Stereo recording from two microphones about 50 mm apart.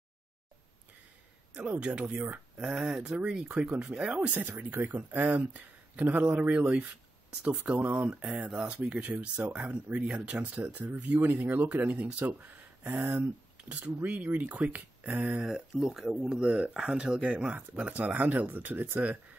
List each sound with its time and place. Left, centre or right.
1.5 s speech: right
4.2 s speech: right
10.6 s speech: right
13.7 s speech: right
15.4 s speech: centre
16.3 s speech: right